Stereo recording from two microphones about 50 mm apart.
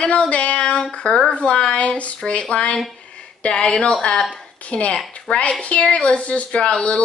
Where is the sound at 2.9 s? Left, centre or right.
Left.